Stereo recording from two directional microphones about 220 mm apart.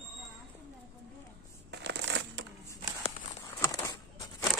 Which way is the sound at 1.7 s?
50° right (ahead or behind).